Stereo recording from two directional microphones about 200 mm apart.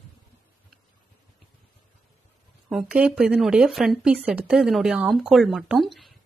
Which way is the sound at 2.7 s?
5° right (ahead or behind).